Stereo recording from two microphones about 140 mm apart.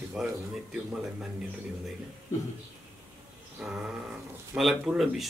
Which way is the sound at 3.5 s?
5° right (ahead or behind).